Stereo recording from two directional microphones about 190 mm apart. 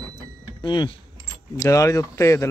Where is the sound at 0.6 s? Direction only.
25° left (ahead or behind).